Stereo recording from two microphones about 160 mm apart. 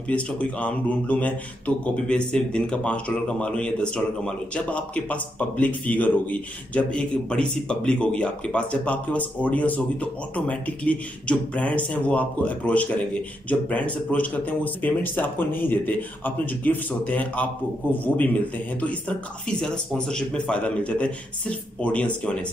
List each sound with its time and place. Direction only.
0.1 s speech: 10° left (ahead or behind)